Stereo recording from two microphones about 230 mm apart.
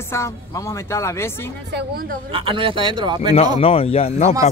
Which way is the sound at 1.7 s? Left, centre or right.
Right.